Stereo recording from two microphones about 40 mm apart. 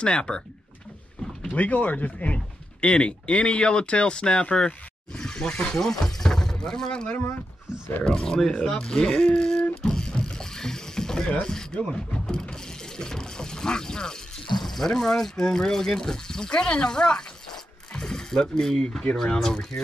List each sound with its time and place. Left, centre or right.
0.0 s speech: left
1.6 s speech: left
5.8 s speech: centre
8.1 s speech: centre
8.5 s a sound: left
11.4 s speech: centre
14.6 s a sound: centre
14.9 s speech: centre